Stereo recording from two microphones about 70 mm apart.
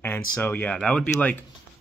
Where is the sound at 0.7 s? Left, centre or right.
Centre.